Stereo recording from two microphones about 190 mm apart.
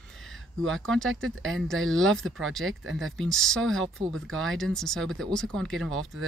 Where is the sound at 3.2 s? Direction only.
Centre (ahead or behind).